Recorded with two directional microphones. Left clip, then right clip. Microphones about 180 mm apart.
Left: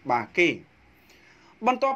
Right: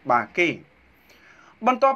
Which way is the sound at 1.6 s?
25° left (ahead or behind).